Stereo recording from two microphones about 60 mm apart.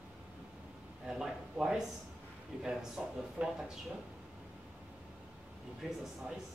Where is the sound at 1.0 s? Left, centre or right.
Centre.